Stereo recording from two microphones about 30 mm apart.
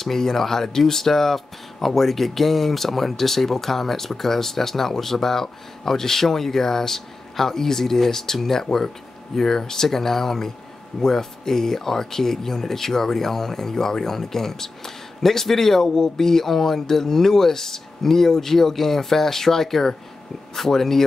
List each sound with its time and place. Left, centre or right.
0.0 s speech: centre